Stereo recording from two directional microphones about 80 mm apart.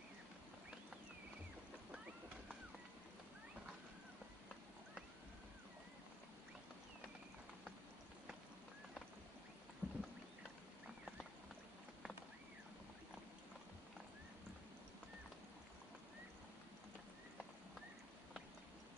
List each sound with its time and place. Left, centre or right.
9.8 s rowboat: right